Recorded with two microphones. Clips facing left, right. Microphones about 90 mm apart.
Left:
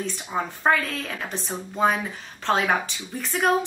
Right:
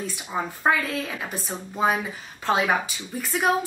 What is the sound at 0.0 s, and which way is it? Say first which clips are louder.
Speech: left 1 dB; 5° right (ahead or behind).